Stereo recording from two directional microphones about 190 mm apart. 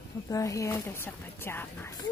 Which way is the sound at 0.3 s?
15° left (ahead or behind).